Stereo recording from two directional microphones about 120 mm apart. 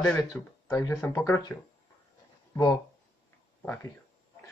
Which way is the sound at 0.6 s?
25° left (ahead or behind).